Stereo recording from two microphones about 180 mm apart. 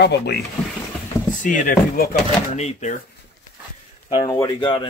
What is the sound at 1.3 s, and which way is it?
Speech, 45° left (ahead or behind).